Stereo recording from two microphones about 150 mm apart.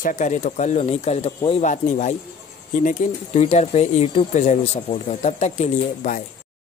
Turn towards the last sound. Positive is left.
turn(degrees=55)  # may be behind; listen again after turning